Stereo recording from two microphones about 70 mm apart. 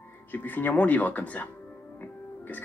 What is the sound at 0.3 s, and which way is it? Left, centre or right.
Speech, left.